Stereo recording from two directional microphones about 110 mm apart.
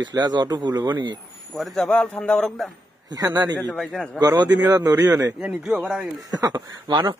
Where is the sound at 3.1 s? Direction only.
35° right (ahead or behind).